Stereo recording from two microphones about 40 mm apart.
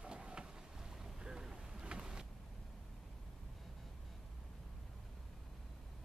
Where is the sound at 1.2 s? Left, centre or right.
Centre.